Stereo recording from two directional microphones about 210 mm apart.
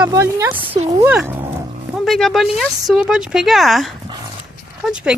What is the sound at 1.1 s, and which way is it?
Dog, 10° right (ahead or behind).